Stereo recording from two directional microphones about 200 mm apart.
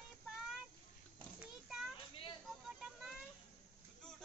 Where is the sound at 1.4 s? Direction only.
5° right (ahead or behind).